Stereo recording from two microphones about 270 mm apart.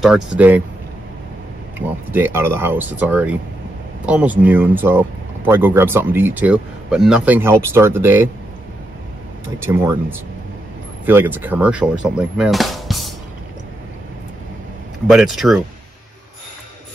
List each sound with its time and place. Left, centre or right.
0.0 s speech: centre
1.8 s speech: centre
9.7 s speech: centre
15.0 s speech: centre